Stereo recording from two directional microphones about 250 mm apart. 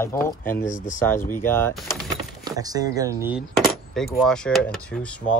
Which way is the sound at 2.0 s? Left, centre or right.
Centre.